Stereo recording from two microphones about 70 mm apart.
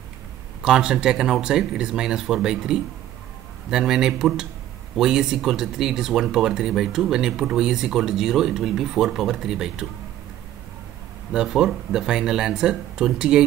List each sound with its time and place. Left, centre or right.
0.6 s speech: centre
11.3 s speech: centre